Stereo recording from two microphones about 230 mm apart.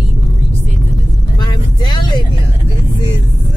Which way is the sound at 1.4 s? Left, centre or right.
Centre.